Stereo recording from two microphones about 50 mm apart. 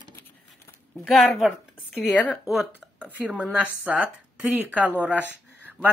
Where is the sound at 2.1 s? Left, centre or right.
Left.